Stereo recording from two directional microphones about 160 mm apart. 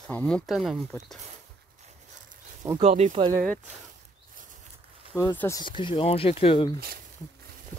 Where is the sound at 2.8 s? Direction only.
40° right (ahead or behind).